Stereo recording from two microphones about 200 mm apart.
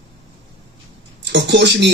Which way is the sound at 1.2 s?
60° right (ahead or behind).